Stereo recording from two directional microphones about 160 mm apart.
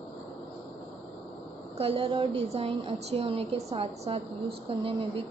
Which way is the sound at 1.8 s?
35° right (ahead or behind).